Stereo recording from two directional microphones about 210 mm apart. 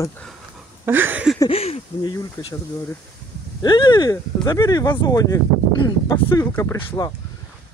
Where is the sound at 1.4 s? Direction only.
30° left (ahead or behind).